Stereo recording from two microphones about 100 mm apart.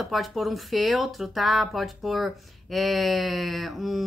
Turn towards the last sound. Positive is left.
turn(degrees=0)  # may be behind; listen again after turning